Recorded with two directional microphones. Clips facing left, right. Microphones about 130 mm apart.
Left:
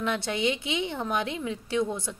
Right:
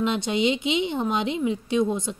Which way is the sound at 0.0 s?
20° right (ahead or behind).